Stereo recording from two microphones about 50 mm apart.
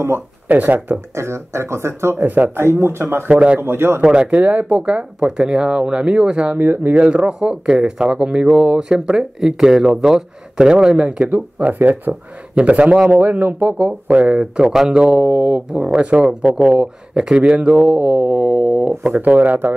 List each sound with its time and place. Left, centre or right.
0.5 s speech: right
1.1 s speech: right
2.1 s speech: right
2.5 s speech: right
3.3 s speech: right
3.6 s speech: right
4.0 s speech: centre
4.4 s speech: right
7.0 s speech: centre; by 13.8 s right
13.8 s speech: right
14.6 s speech: centre
15.2 s speech: right
19.1 s speech: right